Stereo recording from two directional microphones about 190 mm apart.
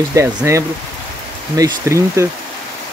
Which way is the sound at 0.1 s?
15° right (ahead or behind).